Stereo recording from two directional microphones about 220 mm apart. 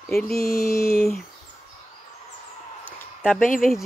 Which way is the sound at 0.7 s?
45° left (ahead or behind).